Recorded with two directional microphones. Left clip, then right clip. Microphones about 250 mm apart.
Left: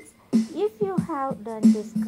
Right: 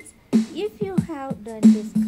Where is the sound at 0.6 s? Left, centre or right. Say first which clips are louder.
Left 2 dB; centre.